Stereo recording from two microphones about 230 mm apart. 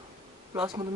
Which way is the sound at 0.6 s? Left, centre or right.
Centre.